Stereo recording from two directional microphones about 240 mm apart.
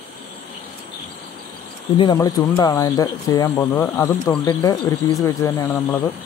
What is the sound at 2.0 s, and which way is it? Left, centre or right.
Speech, centre.